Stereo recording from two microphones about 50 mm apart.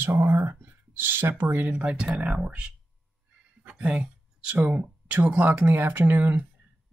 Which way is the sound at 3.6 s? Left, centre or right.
Right.